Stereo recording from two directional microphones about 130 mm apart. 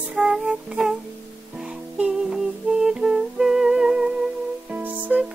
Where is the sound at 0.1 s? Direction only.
5° right (ahead or behind).